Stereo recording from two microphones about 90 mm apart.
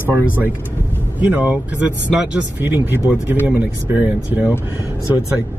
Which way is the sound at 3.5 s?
20° right (ahead or behind).